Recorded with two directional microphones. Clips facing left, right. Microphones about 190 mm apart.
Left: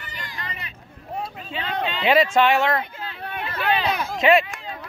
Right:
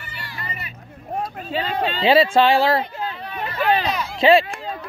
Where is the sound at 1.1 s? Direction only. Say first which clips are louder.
Right 5 dB; 50° right (ahead or behind).